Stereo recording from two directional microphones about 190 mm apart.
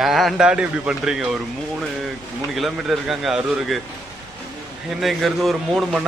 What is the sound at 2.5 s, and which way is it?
A man's voice, centre (ahead or behind).